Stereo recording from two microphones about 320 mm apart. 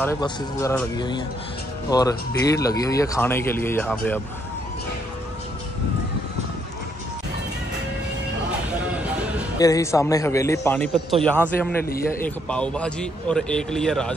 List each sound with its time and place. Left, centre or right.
0.0 s speech: centre
9.6 s speech: centre
11.3 s a man's voice: centre